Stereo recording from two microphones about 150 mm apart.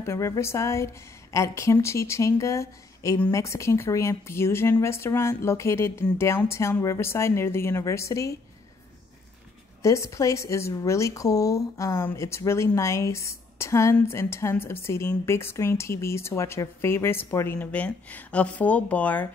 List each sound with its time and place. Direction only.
0.0 s a woman's voice: 20° left (ahead or behind)
9.8 s a woman's voice: 20° left (ahead or behind)